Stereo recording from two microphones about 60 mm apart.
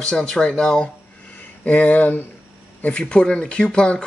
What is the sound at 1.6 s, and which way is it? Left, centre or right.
Speech, left.